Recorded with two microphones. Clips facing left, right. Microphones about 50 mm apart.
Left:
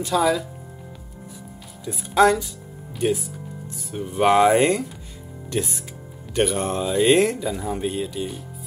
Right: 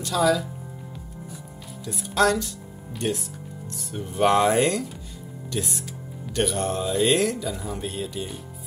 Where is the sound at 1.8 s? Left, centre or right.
Centre.